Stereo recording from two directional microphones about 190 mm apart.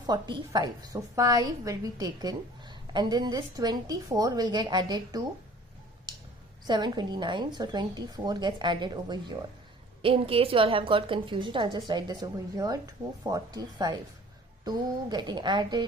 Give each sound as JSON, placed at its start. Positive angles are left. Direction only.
{"t": 0.0, "sound": "a woman's voice", "side_deg": -20}
{"t": 6.7, "sound": "a woman's voice", "side_deg": -25}